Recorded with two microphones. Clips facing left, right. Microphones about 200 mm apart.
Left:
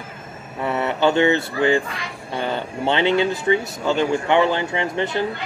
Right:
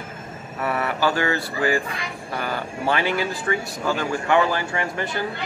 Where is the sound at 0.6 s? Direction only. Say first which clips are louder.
Left 3 dB; 25° left (ahead or behind).